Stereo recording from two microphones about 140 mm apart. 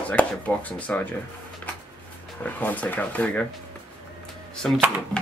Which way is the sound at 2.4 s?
10° left (ahead or behind).